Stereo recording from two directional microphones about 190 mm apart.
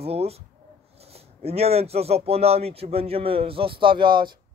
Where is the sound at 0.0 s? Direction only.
30° right (ahead or behind).